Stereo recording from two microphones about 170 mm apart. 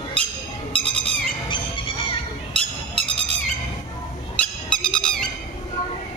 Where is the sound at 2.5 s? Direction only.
35° right (ahead or behind).